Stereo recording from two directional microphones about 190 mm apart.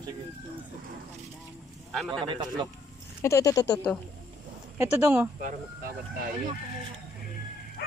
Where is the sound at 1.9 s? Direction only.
5° left (ahead or behind).